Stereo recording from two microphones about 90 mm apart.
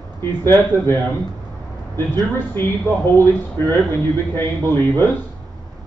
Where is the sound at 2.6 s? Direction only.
25° left (ahead or behind).